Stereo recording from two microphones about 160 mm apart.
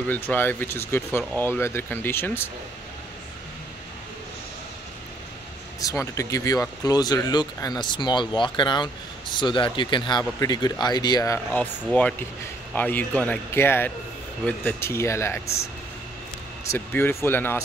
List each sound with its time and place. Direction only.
0.1 s speech: 10° left (ahead or behind)
5.8 s speech: 20° left (ahead or behind)
11.3 s speech: 10° left (ahead or behind)
16.7 s speech: 15° left (ahead or behind)